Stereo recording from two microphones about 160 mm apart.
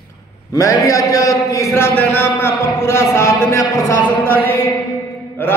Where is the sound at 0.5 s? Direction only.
20° left (ahead or behind).